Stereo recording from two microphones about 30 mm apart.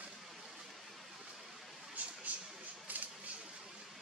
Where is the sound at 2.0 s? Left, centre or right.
Right.